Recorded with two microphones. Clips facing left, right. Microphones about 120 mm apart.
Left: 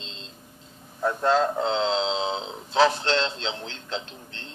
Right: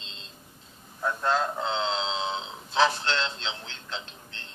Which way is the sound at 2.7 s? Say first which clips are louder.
Left 3 dB; 55° left (ahead or behind).